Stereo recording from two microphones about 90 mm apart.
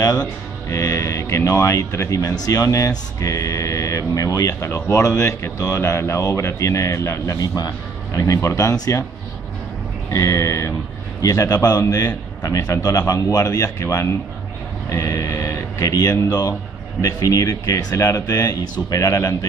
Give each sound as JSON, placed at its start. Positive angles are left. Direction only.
{"t": 0.7, "sound": "speech", "side_deg": 40}
{"t": 10.1, "sound": "a man's voice", "side_deg": 35}